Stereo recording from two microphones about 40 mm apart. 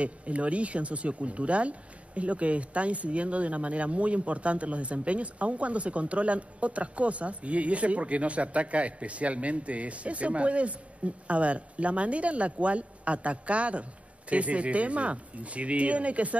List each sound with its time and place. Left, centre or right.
0.0 s speech: right